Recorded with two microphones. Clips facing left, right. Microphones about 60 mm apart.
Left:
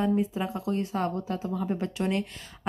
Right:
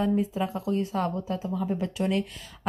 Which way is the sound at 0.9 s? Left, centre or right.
Left.